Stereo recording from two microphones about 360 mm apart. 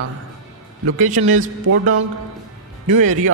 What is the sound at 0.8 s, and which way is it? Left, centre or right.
Speech, right.